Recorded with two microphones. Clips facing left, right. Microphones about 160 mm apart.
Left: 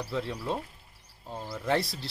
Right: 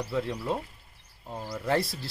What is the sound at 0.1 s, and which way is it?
Speech, 5° right (ahead or behind).